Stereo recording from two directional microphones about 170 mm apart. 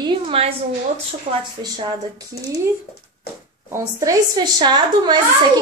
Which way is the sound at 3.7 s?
15° right (ahead or behind).